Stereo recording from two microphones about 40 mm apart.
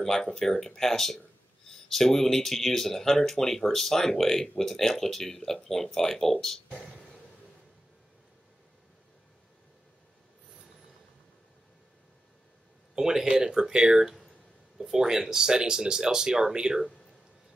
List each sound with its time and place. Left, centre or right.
0.0 s speech: centre
12.9 s speech: centre